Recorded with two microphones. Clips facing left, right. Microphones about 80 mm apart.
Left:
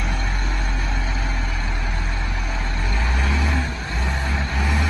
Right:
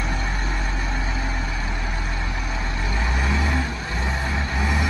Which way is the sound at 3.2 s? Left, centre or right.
Centre.